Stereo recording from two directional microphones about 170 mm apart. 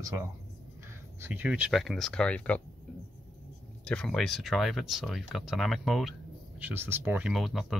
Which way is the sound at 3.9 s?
5° left (ahead or behind).